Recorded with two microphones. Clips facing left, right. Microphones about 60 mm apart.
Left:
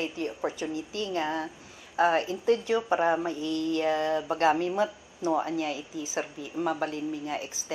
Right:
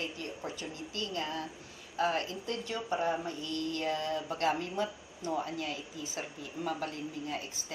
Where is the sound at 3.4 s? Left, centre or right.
Right.